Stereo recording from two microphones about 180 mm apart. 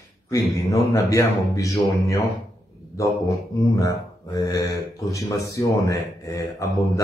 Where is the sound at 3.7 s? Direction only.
15° left (ahead or behind).